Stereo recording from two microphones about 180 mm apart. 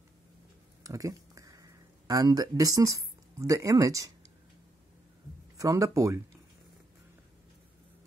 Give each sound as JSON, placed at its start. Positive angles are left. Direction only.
{"t": 0.8, "sound": "speech", "side_deg": -20}
{"t": 5.6, "sound": "speech", "side_deg": -20}